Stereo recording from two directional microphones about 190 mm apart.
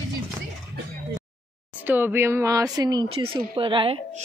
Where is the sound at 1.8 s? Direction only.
10° right (ahead or behind).